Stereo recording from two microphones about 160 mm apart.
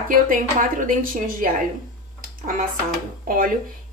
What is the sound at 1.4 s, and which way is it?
Speech, 60° right (ahead or behind).